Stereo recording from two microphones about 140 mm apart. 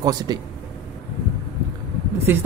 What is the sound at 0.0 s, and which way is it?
Speech, 30° right (ahead or behind).